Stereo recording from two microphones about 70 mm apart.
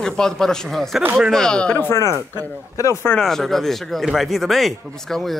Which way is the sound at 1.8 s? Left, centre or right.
Left.